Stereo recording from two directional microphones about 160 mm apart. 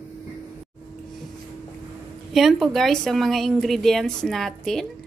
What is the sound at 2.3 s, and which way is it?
Speech, centre (ahead or behind).